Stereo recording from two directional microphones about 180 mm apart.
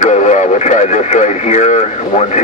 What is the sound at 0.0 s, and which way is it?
Speech, 40° left (ahead or behind).